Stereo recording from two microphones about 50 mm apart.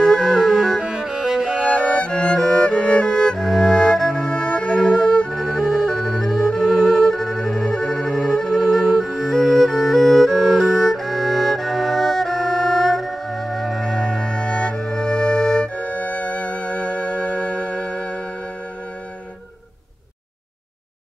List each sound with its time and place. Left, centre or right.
0.0 s music: centre
0.8 s cello: centre
1.6 s music: centre
5.3 s music: centre
9.0 s music: centre
15.7 s music: left